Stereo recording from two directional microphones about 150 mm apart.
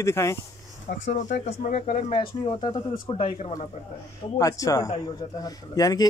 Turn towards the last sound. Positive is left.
turn(degrees=25)  # may be behind; listen again after turning